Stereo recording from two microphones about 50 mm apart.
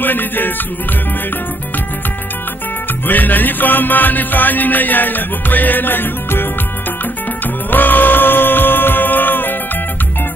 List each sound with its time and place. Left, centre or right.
0.0 s music: left
3.1 s music: left
7.7 s music: left